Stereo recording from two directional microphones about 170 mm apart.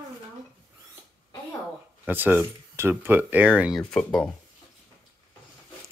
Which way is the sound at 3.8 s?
5° left (ahead or behind).